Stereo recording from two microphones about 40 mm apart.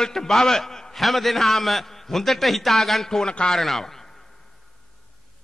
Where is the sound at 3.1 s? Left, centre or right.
Left.